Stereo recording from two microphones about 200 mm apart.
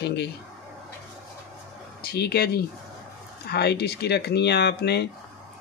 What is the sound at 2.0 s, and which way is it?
Speech, 50° left (ahead or behind).